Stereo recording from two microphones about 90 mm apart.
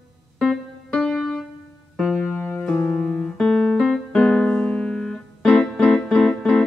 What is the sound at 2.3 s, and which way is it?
Music, 20° left (ahead or behind).